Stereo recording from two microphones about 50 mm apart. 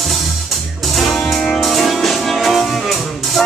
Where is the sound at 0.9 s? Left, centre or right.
Centre.